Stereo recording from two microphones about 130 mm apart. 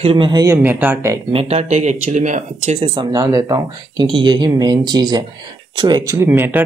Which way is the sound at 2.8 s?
35° right (ahead or behind).